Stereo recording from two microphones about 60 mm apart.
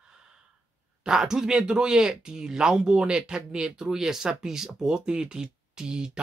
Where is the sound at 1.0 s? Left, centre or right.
Centre.